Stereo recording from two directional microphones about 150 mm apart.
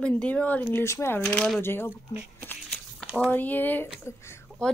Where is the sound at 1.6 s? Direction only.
15° left (ahead or behind).